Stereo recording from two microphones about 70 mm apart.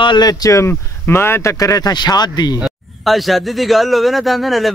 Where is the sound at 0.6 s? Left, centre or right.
Left.